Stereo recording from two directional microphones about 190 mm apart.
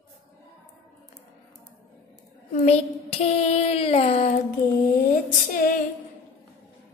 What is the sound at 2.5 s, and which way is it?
Child singing, 35° left (ahead or behind).